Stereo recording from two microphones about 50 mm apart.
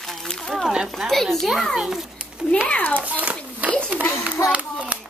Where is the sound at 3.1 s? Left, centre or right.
Right.